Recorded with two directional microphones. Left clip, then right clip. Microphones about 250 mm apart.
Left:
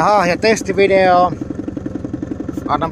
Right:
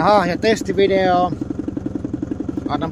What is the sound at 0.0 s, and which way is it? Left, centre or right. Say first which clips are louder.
Speech: left 2 dB; centre.